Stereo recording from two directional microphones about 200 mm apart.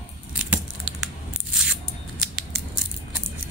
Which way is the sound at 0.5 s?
5° right (ahead or behind).